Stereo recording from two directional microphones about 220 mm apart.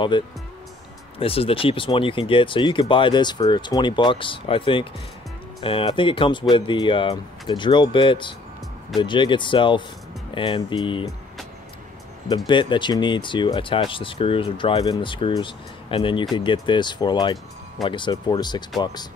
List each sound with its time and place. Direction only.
0.1 s speech: 20° left (ahead or behind)
12.4 s speech: 20° left (ahead or behind)